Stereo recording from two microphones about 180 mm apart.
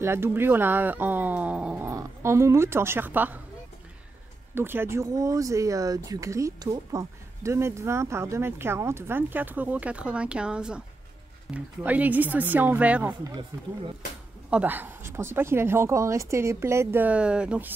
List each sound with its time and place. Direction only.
0.0 s speech: 15° right (ahead or behind)
4.6 s speech: 10° right (ahead or behind)
14.5 s speech: 10° right (ahead or behind)